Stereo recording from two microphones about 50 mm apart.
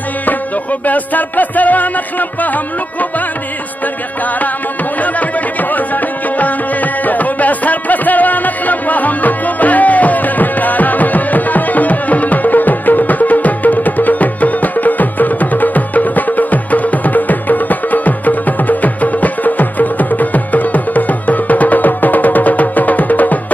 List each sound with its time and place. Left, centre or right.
0.2 s music: left
5.0 s music: left